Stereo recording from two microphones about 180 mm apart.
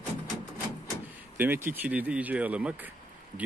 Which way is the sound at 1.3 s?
10° right (ahead or behind).